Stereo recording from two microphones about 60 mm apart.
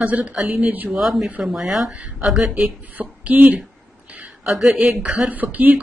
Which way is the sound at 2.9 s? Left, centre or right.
Right.